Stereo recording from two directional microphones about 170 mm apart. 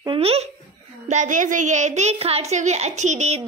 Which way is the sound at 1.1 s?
45° right (ahead or behind).